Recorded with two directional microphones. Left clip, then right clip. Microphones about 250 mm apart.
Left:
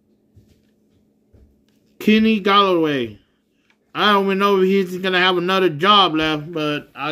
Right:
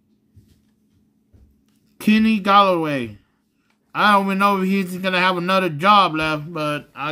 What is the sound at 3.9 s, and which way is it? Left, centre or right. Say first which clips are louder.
A man's voice: even; right.